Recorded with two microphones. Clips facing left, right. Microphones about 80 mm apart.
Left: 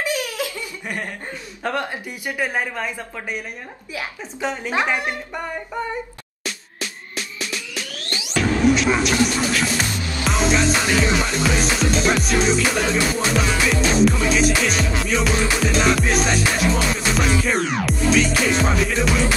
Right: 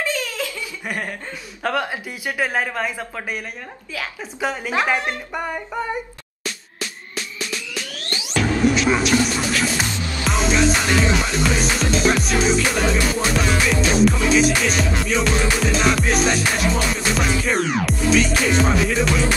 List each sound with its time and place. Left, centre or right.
0.0 s laughter: centre
1.8 s speech: centre
4.7 s speech: centre
8.4 s speech: centre
10.2 s music: centre